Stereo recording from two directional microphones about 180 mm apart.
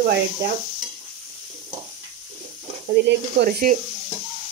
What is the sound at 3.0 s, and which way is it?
Speech, 70° right (ahead or behind).